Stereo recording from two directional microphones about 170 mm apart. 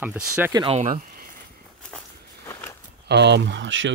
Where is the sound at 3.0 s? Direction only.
90° right.